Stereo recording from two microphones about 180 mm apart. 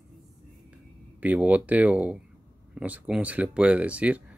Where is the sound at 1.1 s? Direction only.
10° right (ahead or behind).